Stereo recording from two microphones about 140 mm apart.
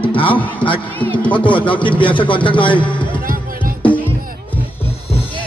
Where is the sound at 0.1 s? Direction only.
40° left (ahead or behind).